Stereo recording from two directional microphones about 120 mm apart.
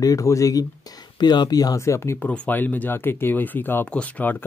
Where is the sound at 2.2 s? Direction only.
10° left (ahead or behind).